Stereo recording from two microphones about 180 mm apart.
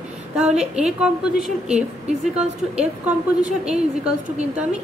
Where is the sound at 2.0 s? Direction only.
35° right (ahead or behind).